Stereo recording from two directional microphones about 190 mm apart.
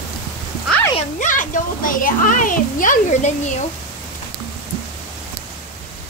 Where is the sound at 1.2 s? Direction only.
45° left (ahead or behind).